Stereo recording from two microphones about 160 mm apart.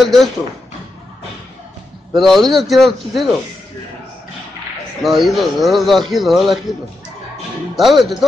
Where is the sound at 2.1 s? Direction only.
Centre (ahead or behind).